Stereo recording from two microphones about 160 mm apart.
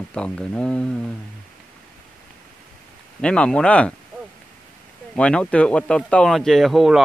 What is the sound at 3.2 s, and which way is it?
Speech, 5° left (ahead or behind).